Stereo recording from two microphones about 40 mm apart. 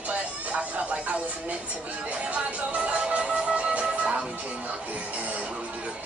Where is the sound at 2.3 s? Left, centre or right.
Right.